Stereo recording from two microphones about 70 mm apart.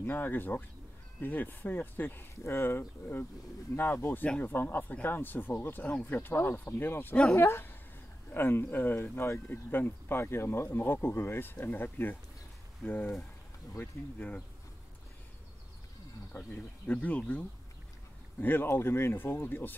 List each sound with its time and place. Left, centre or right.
0.0 s speech: left
7.3 s speech: left
8.3 s speech: left
14.1 s speech: left
16.3 s speech: left
18.4 s speech: left